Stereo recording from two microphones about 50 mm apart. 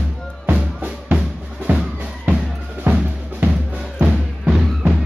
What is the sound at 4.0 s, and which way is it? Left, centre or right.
Music, centre.